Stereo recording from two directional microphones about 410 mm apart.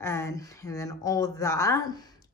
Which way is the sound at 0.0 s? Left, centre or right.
Centre.